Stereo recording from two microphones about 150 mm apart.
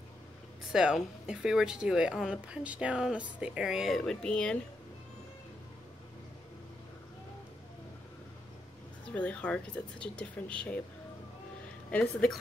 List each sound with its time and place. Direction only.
0.7 s speech: 5° right (ahead or behind)
9.1 s speech: 10° left (ahead or behind)
11.9 s speech: 5° left (ahead or behind)